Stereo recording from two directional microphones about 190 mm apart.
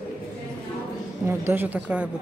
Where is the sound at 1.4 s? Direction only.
10° right (ahead or behind).